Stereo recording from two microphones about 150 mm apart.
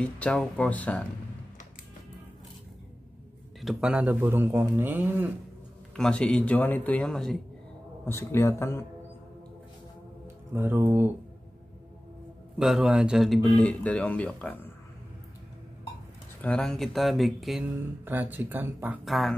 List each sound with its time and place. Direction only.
0.0 s speech: 5° left (ahead or behind)
3.6 s a man's voice: 10° right (ahead or behind)
5.9 s speech: 5° left (ahead or behind)
8.0 s speech: 15° left (ahead or behind)
10.2 s speech: 15° right (ahead or behind)
12.5 s speech: 5° right (ahead or behind)
16.3 s speech: 5° left (ahead or behind)
18.0 s a man's voice: 10° right (ahead or behind)
19.0 s speech: centre (ahead or behind)